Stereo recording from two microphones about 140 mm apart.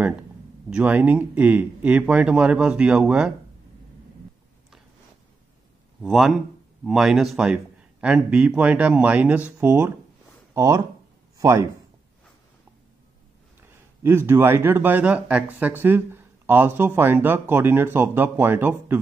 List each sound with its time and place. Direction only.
0.7 s speech: 10° right (ahead or behind)
6.0 s a man's voice: centre (ahead or behind); by 11.6 s 20° right (ahead or behind)
14.0 s speech: 15° right (ahead or behind)